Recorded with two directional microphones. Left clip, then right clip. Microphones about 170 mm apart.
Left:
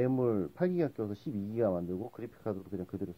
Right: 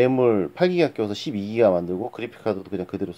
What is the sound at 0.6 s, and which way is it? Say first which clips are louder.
Speech: right 12 dB; 25° right (ahead or behind).